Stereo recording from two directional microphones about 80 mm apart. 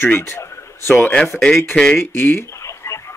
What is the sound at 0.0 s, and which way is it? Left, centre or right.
Speech, left.